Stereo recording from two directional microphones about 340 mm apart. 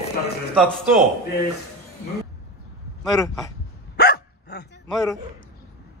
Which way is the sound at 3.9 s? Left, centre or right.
Left.